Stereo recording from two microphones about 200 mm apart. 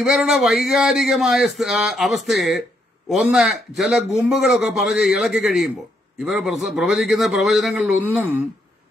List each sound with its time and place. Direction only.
0.0 s a man's voice: centre (ahead or behind)